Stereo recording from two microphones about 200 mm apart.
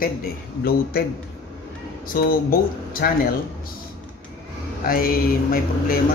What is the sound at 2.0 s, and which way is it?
Speech, 45° left (ahead or behind).